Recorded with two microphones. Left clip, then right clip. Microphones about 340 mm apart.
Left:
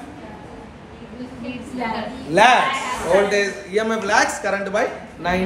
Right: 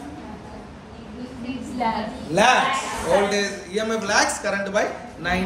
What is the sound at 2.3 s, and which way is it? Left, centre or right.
A man's voice, left.